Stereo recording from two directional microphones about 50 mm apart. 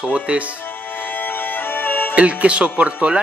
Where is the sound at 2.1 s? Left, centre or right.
Right.